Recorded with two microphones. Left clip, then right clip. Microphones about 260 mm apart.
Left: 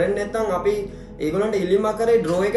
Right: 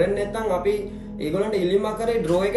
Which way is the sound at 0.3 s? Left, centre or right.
Centre.